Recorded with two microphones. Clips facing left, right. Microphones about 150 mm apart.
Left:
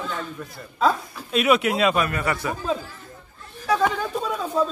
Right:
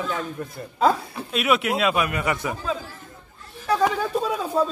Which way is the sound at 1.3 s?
Centre (ahead or behind).